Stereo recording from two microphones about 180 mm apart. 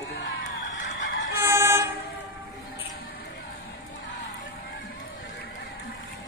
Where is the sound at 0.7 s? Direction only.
90° left.